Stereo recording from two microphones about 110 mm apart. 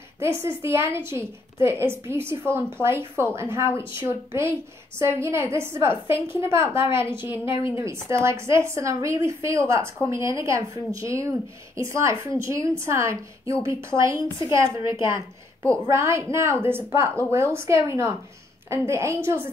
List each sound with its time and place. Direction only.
0.2 s a woman's voice: 25° right (ahead or behind)